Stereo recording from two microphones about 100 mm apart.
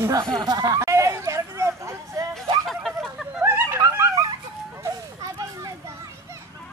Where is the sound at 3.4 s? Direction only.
25° right (ahead or behind).